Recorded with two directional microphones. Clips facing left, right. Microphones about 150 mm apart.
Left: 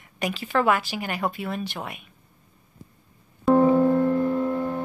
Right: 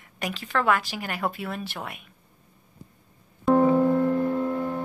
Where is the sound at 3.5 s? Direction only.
Centre (ahead or behind).